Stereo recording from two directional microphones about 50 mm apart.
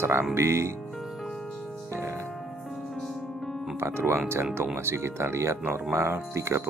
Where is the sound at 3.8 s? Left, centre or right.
Right.